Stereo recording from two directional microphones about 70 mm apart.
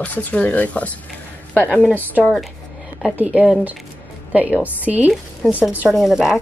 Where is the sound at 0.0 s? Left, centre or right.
Left.